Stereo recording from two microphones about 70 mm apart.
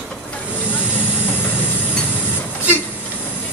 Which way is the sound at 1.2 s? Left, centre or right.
Left.